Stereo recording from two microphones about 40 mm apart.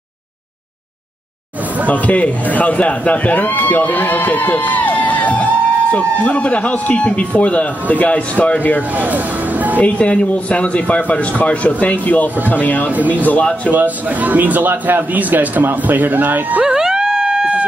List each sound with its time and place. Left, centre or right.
1.9 s speech: left
8.9 s music: right
9.8 s speech: left
13.7 s a man's voice: right
16.6 s howl: centre